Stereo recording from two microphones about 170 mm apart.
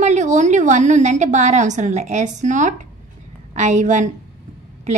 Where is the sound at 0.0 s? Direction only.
45° right (ahead or behind).